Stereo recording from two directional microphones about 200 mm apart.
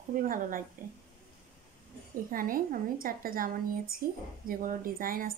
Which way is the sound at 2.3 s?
45° right (ahead or behind).